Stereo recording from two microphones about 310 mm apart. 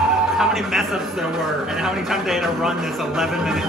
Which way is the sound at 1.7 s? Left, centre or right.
Centre.